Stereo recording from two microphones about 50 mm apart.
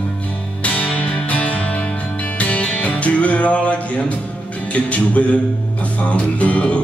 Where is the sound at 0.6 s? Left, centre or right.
Left.